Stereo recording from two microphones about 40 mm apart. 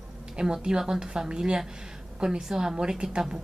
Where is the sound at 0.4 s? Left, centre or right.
Centre.